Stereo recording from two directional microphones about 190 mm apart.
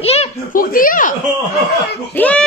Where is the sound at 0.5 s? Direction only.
45° left (ahead or behind).